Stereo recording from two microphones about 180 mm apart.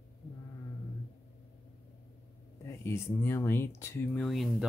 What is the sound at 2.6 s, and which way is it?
Speech, 15° left (ahead or behind).